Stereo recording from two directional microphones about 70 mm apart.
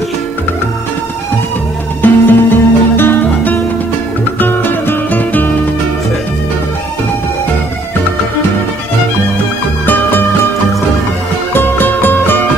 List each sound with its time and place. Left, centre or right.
2.0 s music: left
11.5 s music: left